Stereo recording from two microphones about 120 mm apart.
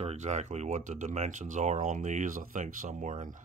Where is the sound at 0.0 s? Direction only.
70° right (ahead or behind).